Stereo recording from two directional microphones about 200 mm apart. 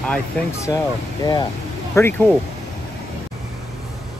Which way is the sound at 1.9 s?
10° left (ahead or behind).